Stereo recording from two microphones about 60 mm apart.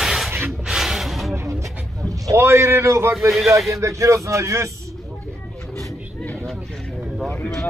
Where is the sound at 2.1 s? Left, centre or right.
Right.